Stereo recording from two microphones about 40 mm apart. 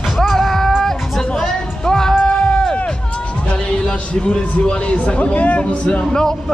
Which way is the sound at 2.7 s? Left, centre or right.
Left.